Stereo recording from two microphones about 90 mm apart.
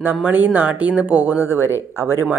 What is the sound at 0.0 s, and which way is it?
Speech, 20° right (ahead or behind).